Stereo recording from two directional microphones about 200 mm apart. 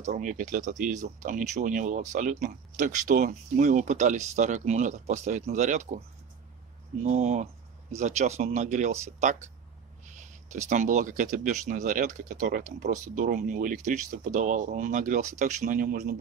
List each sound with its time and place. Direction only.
0.0 s speech: 35° right (ahead or behind)